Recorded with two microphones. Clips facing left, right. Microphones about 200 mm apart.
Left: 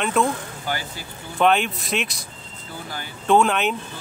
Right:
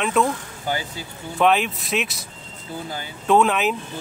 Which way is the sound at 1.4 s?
Centre (ahead or behind).